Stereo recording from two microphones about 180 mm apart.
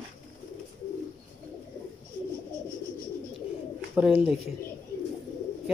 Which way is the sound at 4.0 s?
5° right (ahead or behind).